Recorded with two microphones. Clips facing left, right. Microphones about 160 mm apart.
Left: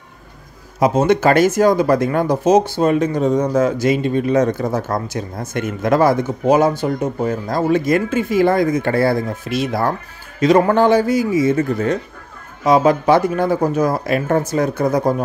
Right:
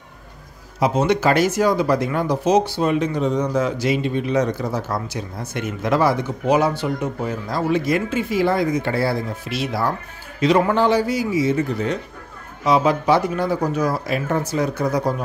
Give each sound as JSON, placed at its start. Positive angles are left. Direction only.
{"t": 0.7, "sound": "speech", "side_deg": 50}